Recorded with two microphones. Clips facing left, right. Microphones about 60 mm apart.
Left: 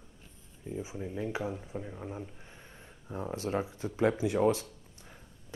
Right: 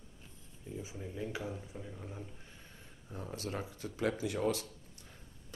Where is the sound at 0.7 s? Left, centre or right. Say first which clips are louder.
Left 6 dB; left.